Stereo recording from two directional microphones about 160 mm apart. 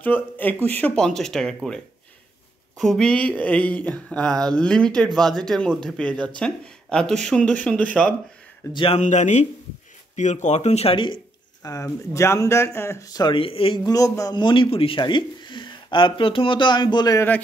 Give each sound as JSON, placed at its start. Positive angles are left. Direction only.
{"t": 0.0, "sound": "speech", "side_deg": 10}
{"t": 2.8, "sound": "speech", "side_deg": 0}
{"t": 8.7, "sound": "speech", "side_deg": 35}
{"t": 9.0, "sound": "speech", "side_deg": 45}
{"t": 11.6, "sound": "speech", "side_deg": 20}
{"t": 13.8, "sound": "speech", "side_deg": 20}